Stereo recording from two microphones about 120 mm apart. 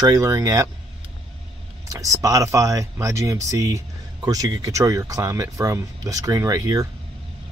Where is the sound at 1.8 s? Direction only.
30° right (ahead or behind).